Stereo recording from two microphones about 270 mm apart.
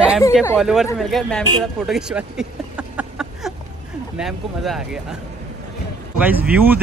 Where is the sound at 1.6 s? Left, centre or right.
Centre.